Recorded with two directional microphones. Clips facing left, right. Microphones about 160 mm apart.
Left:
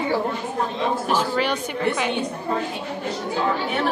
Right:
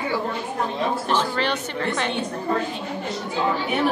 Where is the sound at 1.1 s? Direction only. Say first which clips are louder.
Left 2 dB; 10° left (ahead or behind).